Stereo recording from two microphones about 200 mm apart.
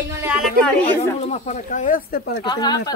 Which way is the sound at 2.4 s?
20° left (ahead or behind).